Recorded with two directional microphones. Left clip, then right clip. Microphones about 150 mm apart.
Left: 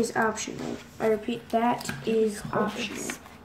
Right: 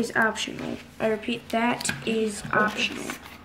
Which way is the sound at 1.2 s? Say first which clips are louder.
Even; 10° right (ahead or behind).